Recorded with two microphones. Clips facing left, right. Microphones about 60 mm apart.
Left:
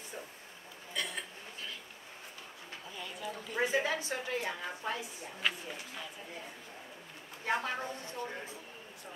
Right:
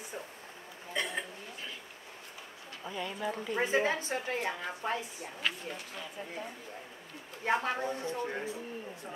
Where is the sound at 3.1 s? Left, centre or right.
Right.